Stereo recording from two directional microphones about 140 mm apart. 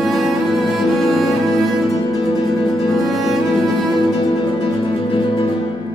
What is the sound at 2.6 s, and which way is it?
Music, 35° left (ahead or behind).